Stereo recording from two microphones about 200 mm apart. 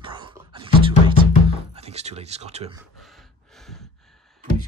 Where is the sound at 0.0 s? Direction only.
25° right (ahead or behind).